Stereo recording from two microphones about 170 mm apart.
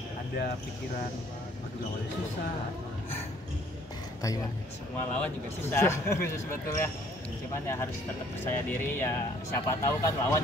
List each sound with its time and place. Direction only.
5.1 s speech: 10° left (ahead or behind)
8.6 s speech: 10° left (ahead or behind)